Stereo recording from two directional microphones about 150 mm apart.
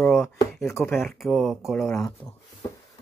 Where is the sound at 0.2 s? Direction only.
20° left (ahead or behind).